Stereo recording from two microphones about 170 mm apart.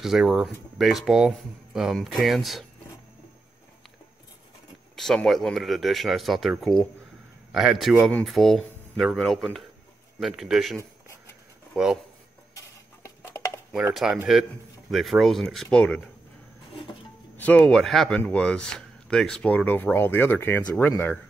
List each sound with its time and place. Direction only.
0.0 s speech: centre (ahead or behind)
4.9 s speech: centre (ahead or behind)
12.5 s a sound: 15° left (ahead or behind)
13.9 s speech: 5° right (ahead or behind)
17.4 s speech: 10° left (ahead or behind)